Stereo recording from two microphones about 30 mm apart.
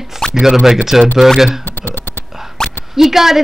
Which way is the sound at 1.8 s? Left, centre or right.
Left.